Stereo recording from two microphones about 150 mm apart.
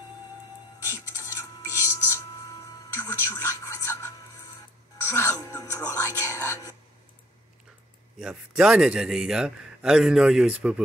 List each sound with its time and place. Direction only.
0.8 s music: 20° left (ahead or behind)
8.2 s a man's voice: 5° right (ahead or behind)